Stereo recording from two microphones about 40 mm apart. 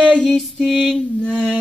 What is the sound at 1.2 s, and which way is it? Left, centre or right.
Music, centre.